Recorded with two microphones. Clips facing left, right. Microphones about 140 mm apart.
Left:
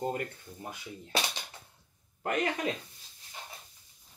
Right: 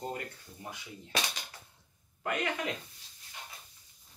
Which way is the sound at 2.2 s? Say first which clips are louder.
Left 3 dB; 35° left (ahead or behind).